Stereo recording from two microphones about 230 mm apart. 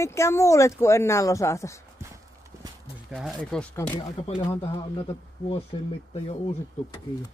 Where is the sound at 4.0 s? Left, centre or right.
Left.